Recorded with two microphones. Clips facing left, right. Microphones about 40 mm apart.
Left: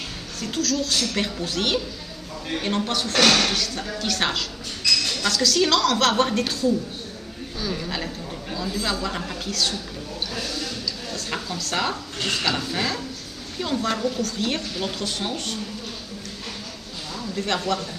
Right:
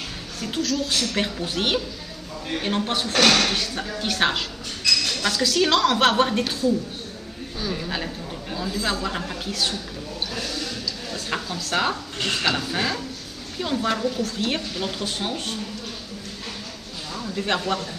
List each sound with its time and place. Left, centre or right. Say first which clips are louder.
0.4 s a woman's voice: even; centre
2.5 s a woman's voice: even; centre
3.5 s a woman's voice: even; right
6.2 s speech: even; centre
7.6 s speech: even; centre
9.5 s speech: left 1 dB; centre
10.3 s a sound: left 1 dB; centre
11.7 s a woman's voice: right 2 dB; centre
15.0 s speech: even; centre
17.2 s a sound: right 1 dB; centre